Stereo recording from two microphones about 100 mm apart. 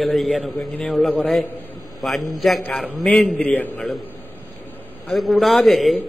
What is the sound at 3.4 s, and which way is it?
Speech, 15° left (ahead or behind).